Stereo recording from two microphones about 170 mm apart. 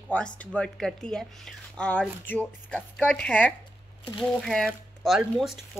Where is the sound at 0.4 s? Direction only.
5° left (ahead or behind).